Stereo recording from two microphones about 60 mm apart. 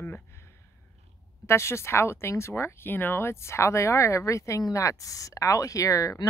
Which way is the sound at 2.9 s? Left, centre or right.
Left.